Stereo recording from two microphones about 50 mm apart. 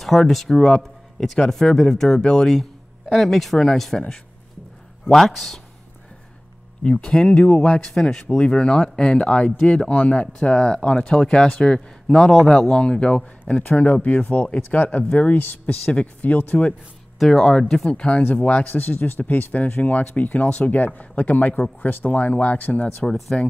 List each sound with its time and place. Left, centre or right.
0.0 s speech: centre
3.1 s speech: centre
5.1 s speech: centre
6.8 s speech: centre; by 16.5 s left
17.2 s speech: centre
17.9 s speech: left
18.7 s speech: left
23.0 s speech: centre